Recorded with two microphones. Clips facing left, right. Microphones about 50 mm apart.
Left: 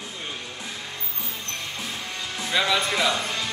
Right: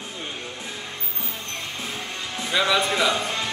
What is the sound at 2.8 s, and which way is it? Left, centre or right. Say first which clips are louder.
Music: right 2 dB; right.